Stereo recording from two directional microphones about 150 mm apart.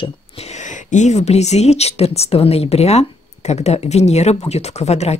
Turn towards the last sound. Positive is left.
turn(degrees=45)  # may be behind; listen again after turning